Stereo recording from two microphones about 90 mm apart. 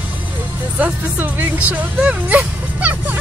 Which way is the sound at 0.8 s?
20° right (ahead or behind).